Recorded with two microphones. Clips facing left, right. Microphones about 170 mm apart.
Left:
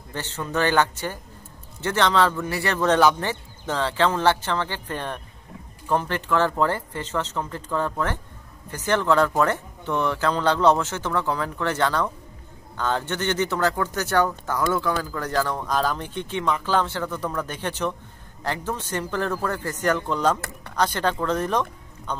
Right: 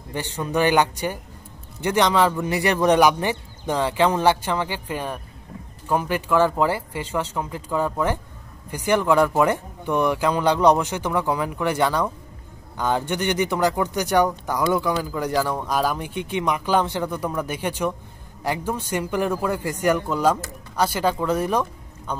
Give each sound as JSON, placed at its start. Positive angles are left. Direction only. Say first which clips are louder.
{"t": 0.1, "sound": "speech", "louder": "right 3 dB", "side_deg": -15}
{"t": 20.3, "sound": "speech", "louder": "right 1 dB", "side_deg": 65}
{"t": 20.7, "sound": "speech", "louder": "right 2 dB", "side_deg": -10}